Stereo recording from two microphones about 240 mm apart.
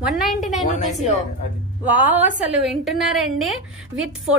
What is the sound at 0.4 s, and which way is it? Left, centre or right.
Speech, left.